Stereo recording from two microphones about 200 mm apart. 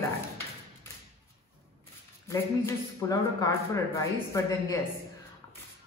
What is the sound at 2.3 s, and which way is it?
A woman's voice, 15° left (ahead or behind).